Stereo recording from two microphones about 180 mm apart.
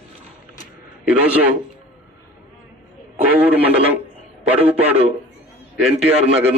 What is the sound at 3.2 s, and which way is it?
Speech, 10° right (ahead or behind).